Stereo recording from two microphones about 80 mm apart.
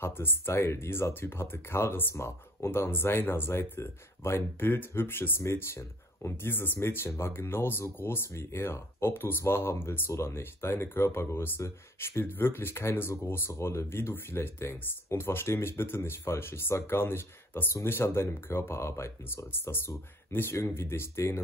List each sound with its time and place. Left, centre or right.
0.0 s speech: left